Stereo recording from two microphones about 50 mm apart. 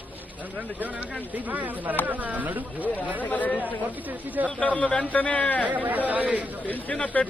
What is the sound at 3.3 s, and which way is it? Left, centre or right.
Speech, left.